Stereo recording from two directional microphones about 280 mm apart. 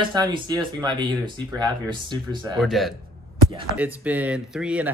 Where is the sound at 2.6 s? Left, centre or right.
Centre.